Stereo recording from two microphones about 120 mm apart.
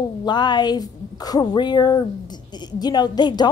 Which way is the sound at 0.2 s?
35° left (ahead or behind).